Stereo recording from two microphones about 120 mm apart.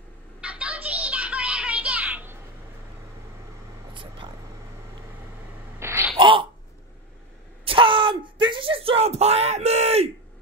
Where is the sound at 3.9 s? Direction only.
45° right (ahead or behind).